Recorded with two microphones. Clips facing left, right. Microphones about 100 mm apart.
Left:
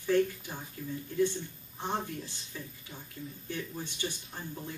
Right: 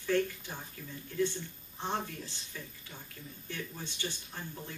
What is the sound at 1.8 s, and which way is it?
Speech, 15° left (ahead or behind).